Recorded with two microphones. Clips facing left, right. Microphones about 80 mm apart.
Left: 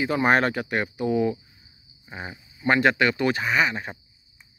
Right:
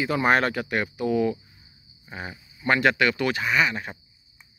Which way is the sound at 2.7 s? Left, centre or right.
Left.